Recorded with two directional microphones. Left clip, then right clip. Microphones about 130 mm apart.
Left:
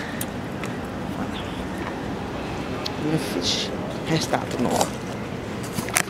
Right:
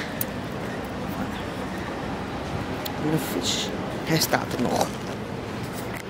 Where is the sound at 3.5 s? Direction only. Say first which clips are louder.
Left 2 dB; 20° right (ahead or behind).